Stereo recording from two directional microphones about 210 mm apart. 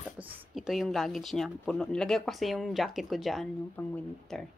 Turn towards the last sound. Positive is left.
turn(degrees=5)  # may be behind; listen again after turning